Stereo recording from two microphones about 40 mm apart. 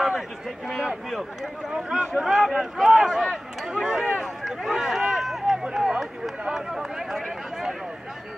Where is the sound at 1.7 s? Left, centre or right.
Centre.